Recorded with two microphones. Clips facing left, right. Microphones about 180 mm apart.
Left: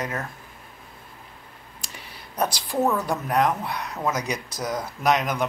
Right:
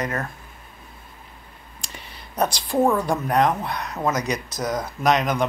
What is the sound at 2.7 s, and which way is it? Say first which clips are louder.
Speech: right 4 dB; 10° right (ahead or behind).